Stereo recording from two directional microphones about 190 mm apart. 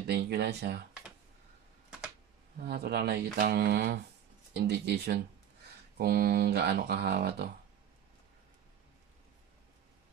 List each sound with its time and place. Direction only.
0.0 s speech: 60° right (ahead or behind)
2.6 s speech: 55° right (ahead or behind)